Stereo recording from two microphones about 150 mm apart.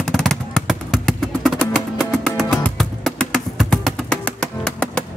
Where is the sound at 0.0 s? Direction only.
5° left (ahead or behind).